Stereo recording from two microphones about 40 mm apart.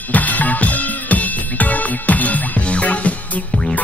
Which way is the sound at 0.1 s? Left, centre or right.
Left.